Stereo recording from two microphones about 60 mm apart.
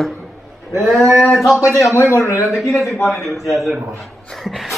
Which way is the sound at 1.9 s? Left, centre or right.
Left.